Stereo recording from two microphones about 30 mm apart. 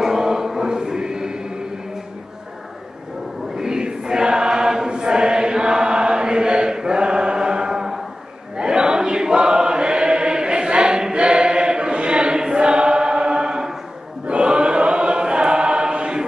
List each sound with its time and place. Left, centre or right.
0.0 s chant: centre
3.5 s choir: right
4.9 s chant: right
8.5 s choir: right
14.2 s choir: right